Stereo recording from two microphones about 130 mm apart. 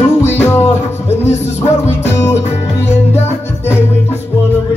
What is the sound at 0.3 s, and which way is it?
Music, 20° left (ahead or behind).